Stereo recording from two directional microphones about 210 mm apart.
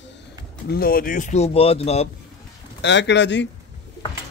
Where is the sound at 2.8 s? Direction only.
55° left (ahead or behind).